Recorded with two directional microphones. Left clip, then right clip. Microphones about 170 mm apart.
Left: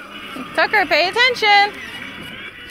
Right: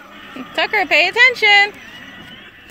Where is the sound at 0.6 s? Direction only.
35° right (ahead or behind).